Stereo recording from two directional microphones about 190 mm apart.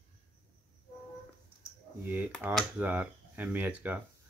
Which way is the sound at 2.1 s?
10° right (ahead or behind).